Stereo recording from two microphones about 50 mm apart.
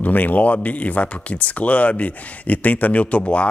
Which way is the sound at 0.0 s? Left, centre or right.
Left.